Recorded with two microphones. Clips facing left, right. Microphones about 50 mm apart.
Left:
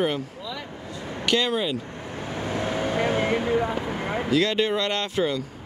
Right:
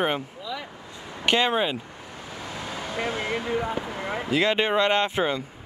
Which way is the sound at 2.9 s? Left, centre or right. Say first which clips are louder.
Left 3 dB; left.